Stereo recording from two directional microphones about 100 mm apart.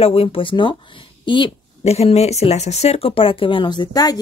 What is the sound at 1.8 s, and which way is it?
Speech, 90° left.